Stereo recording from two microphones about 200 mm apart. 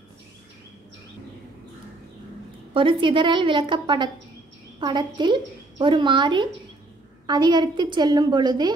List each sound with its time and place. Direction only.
2.7 s a woman's voice: 25° right (ahead or behind)